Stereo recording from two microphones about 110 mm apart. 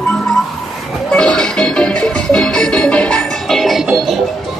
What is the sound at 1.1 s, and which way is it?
Music, 10° left (ahead or behind).